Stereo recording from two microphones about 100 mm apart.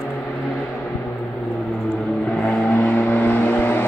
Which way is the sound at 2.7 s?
15° left (ahead or behind).